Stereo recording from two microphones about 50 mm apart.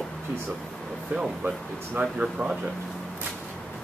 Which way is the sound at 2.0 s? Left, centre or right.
Right.